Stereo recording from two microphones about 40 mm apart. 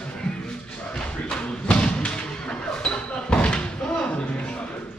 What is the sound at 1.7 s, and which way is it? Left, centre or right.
Thump, left.